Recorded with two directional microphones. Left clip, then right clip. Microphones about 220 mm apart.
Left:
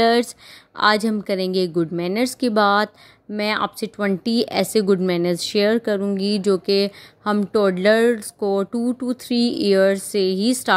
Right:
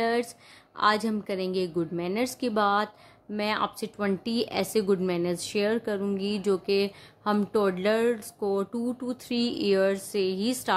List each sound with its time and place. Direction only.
0.0 s speech: 30° left (ahead or behind)